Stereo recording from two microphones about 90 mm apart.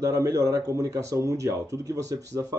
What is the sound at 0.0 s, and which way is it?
Speech, 35° right (ahead or behind).